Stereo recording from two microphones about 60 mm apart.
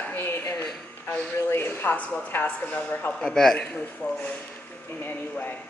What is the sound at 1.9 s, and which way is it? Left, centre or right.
Speech, left.